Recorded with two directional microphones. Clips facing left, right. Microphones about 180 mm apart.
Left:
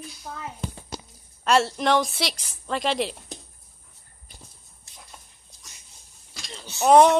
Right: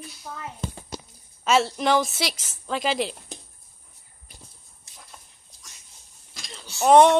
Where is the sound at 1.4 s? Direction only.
Centre (ahead or behind).